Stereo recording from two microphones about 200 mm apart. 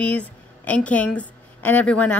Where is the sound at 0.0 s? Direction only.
5° left (ahead or behind).